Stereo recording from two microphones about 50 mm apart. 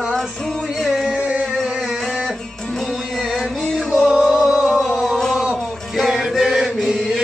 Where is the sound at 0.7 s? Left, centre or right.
Centre.